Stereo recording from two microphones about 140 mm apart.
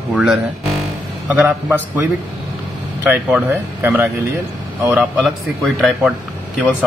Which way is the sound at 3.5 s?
15° right (ahead or behind).